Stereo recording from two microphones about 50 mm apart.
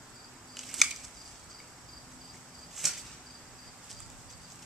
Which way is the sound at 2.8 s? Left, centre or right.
Centre.